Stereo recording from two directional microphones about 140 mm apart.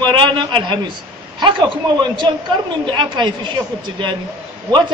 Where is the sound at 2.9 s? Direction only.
35° right (ahead or behind).